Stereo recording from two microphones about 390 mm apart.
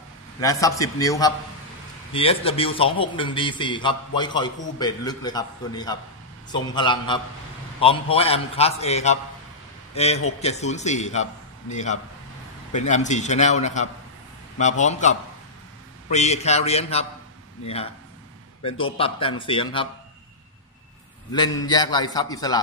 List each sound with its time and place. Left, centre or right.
0.4 s a man's voice: centre
18.6 s a man's voice: centre
21.6 s a man's voice: centre